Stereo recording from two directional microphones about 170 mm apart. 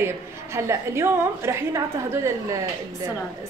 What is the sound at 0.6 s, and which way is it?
A woman's voice, 15° right (ahead or behind).